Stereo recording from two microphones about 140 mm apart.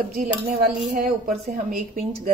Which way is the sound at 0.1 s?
90° right.